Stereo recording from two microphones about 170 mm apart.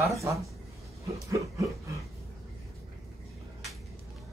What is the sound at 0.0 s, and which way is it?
Speech, 15° right (ahead or behind).